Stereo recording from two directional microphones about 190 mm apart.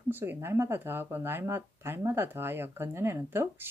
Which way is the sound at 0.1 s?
10° right (ahead or behind).